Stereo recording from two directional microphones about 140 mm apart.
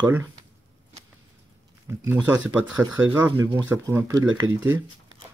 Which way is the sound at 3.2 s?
20° right (ahead or behind).